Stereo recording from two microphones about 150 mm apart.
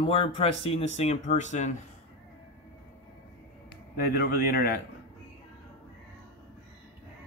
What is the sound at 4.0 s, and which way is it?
Speech, 85° left.